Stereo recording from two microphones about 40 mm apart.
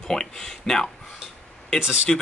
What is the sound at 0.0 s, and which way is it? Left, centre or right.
Speech, centre.